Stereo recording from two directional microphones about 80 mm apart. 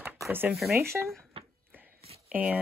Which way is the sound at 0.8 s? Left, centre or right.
Right.